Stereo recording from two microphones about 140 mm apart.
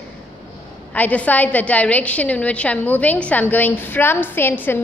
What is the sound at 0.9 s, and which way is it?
A woman's voice, 10° left (ahead or behind).